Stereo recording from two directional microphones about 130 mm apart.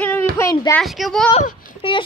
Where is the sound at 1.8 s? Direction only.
45° left (ahead or behind).